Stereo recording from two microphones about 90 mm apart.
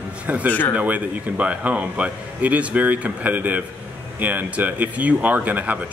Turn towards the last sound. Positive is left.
turn(degrees=-20)  # may be behind; listen again after turning